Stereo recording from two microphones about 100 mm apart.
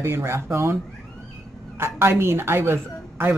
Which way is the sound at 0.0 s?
25° right (ahead or behind).